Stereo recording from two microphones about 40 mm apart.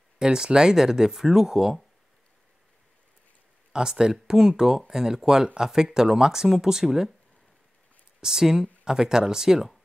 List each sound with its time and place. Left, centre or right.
0.2 s speech: centre
3.7 s speech: centre
8.2 s speech: centre